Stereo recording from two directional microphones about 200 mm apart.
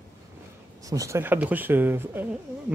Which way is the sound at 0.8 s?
15° right (ahead or behind).